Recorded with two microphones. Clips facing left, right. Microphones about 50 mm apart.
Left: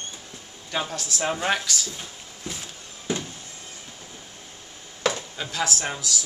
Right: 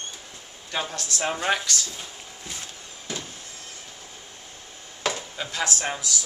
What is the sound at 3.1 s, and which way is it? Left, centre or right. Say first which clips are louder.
Vehicle: left 6 dB; left.